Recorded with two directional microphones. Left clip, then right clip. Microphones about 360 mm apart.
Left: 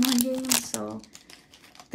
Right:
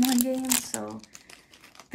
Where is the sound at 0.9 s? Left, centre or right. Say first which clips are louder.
Left 1 dB; right.